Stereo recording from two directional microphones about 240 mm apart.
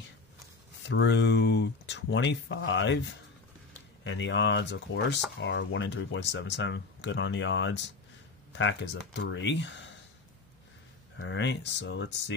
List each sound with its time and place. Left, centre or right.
0.8 s speech: left
11.1 s speech: left